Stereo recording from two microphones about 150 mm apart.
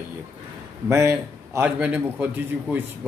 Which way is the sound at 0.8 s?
20° right (ahead or behind).